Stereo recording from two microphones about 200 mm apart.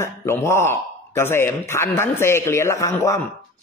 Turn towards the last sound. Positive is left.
turn(degrees=15)  # may be behind; listen again after turning